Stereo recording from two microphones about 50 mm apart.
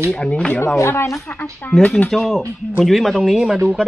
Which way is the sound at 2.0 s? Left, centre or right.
Centre.